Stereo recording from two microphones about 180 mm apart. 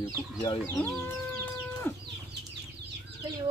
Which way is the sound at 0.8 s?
10° left (ahead or behind).